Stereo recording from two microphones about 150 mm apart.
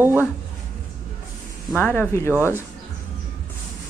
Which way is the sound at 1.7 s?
10° left (ahead or behind).